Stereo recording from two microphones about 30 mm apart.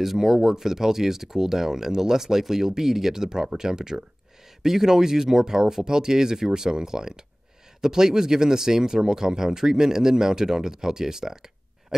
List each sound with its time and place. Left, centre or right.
0.0 s speech: centre